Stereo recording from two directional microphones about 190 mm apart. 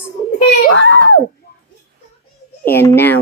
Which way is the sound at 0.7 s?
80° left.